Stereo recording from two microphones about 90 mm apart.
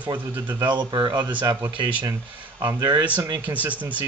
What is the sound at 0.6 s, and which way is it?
Speech, 60° right (ahead or behind).